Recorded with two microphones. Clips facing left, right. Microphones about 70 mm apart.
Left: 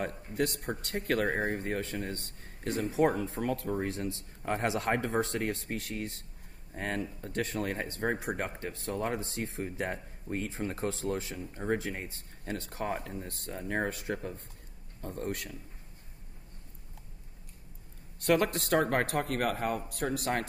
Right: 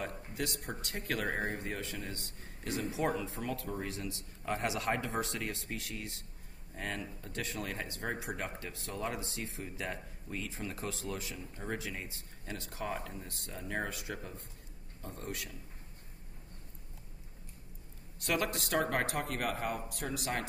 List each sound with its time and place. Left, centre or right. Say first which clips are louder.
0.0 s a man's voice: left 6 dB; left
18.2 s speech: left 7 dB; left